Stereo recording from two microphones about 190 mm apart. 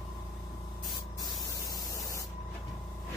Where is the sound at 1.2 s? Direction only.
20° left (ahead or behind).